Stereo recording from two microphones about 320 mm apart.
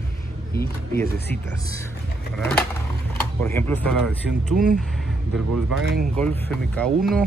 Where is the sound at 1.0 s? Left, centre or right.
Left.